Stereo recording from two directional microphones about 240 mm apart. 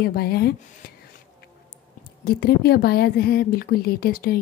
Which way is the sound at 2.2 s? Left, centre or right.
Left.